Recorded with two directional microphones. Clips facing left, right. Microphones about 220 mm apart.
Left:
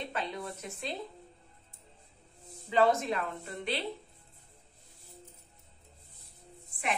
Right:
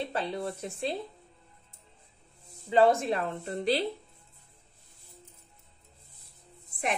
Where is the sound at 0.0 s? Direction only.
35° right (ahead or behind).